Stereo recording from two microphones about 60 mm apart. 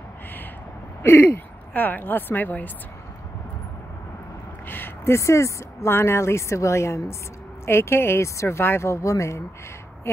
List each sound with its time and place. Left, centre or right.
1.3 s speech: left
4.6 s a sound: left
5.1 s speech: left
5.9 s speech: left
10.1 s speech: left